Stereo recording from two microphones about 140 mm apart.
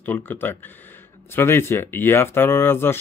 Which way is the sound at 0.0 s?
15° left (ahead or behind).